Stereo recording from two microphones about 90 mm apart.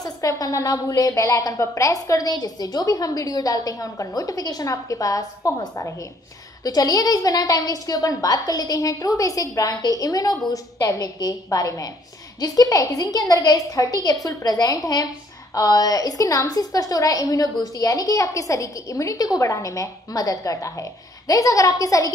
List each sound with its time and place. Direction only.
0.0 s a woman's voice: 40° left (ahead or behind)
6.6 s a woman's voice: 45° left (ahead or behind)